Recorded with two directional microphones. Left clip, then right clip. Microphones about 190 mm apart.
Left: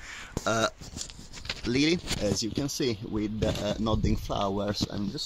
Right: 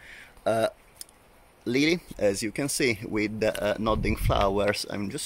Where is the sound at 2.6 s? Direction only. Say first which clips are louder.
Right 4 dB; 35° right (ahead or behind).